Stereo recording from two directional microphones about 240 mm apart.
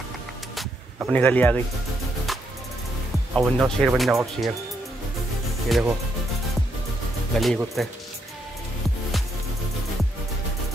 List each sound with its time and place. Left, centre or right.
0.6 s a sound: centre
1.1 s speech: centre
2.3 s music: centre
3.3 s speech: centre
5.7 s speech: centre
7.3 s speech: centre